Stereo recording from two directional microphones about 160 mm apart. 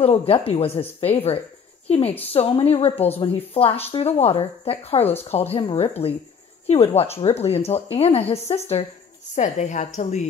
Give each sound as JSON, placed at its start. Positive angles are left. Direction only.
{"t": 0.0, "sound": "a woman's voice", "side_deg": 40}